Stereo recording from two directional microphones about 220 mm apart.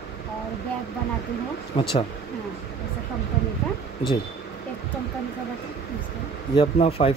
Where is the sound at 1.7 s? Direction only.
30° left (ahead or behind).